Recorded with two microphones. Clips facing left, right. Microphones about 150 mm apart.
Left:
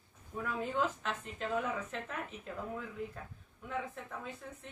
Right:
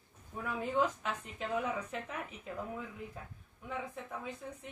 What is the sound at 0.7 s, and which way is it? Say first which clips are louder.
A woman's voice: right 4 dB; 10° right (ahead or behind).